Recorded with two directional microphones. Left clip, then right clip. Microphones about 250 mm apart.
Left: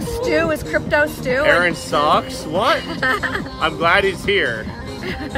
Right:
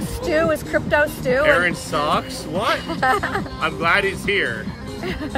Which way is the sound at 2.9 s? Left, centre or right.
Centre.